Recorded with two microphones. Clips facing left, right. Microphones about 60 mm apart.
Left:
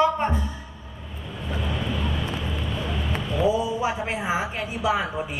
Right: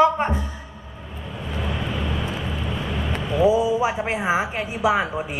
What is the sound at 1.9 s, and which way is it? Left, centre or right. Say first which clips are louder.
Vehicle: right 1 dB; right.